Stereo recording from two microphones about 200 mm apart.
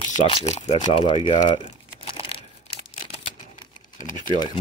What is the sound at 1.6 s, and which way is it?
Crumpling, 30° left (ahead or behind).